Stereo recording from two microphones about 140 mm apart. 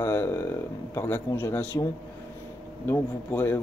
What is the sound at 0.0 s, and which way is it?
Speech, 20° left (ahead or behind).